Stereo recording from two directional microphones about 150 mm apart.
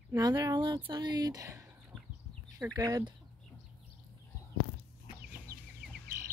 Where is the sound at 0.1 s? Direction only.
25° right (ahead or behind).